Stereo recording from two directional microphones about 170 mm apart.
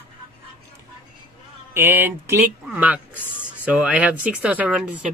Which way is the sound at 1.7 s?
10° right (ahead or behind).